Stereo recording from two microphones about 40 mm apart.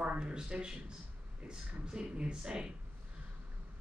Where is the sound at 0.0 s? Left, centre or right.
Right.